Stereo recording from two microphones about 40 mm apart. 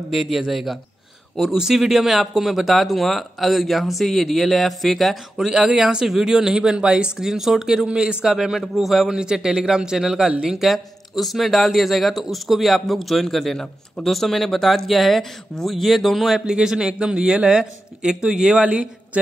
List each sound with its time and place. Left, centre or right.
0.1 s speech: centre
5.4 s a man's voice: centre
6.0 s speech: centre
7.2 s speech: centre
9.1 s speech: centre
10.7 s speech: centre
16.4 s a man's voice: centre
18.6 s a man's voice: right